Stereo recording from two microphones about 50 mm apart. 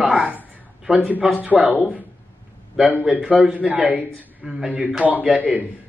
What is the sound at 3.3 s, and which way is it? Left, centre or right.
Speech, right.